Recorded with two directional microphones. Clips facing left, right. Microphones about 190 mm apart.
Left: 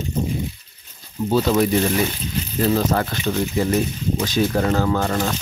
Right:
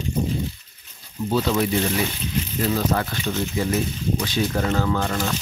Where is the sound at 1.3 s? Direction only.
40° left (ahead or behind).